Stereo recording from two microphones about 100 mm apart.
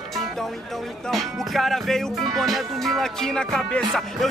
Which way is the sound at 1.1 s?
Centre (ahead or behind).